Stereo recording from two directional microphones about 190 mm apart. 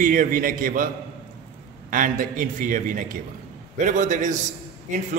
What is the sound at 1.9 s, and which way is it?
A man's voice, 45° right (ahead or behind).